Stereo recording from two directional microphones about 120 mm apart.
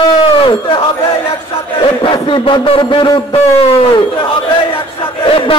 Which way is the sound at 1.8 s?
45° left (ahead or behind).